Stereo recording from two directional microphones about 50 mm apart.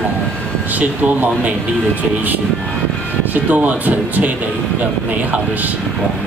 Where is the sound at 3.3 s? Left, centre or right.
Right.